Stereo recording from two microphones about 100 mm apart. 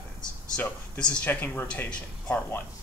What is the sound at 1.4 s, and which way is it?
Speech, 20° left (ahead or behind).